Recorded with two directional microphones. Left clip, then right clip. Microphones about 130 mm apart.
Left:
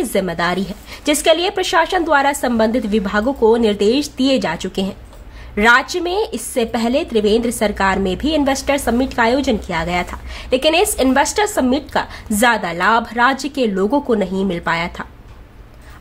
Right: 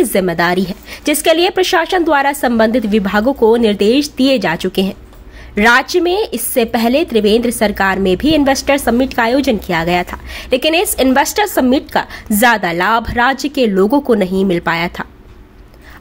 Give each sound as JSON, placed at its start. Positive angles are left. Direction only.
{"t": 0.0, "sound": "a woman's voice", "side_deg": -20}